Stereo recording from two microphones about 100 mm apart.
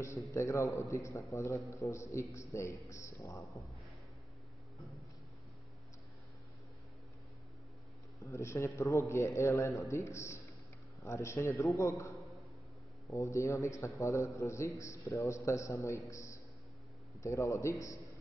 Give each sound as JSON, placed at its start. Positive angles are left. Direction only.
{"t": 0.3, "sound": "a man's voice", "side_deg": 30}
{"t": 8.2, "sound": "a man's voice", "side_deg": 30}